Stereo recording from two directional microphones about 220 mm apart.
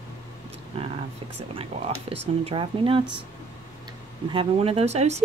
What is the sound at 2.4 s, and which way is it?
Speech, 25° right (ahead or behind).